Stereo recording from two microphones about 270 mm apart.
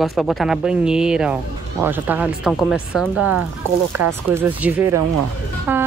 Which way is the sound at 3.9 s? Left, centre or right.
Right.